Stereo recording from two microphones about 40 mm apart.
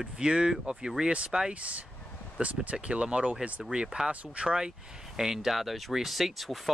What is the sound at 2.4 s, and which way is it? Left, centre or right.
Speech, right.